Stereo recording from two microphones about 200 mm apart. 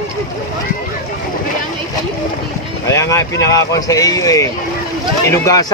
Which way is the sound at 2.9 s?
15° left (ahead or behind).